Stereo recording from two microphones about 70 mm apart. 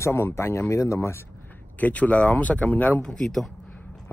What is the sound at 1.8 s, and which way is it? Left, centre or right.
Speech, left.